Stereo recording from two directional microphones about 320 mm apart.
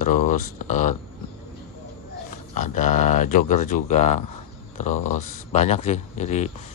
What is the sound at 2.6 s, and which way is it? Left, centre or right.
Speech, left.